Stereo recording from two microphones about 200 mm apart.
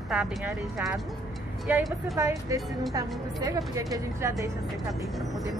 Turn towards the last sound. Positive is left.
turn(degrees=-15)  # may be behind; listen again after turning